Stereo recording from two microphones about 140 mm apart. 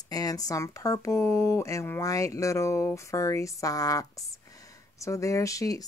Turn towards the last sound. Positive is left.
turn(degrees=25)  # may be behind; listen again after turning